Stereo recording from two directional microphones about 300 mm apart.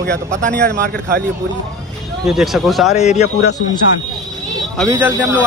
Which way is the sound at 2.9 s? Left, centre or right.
Left.